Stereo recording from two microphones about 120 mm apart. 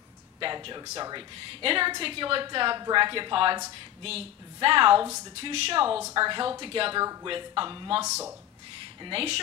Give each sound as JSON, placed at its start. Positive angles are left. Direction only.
{"t": 0.4, "sound": "a woman's voice", "side_deg": -45}
{"t": 9.0, "sound": "a woman's voice", "side_deg": -50}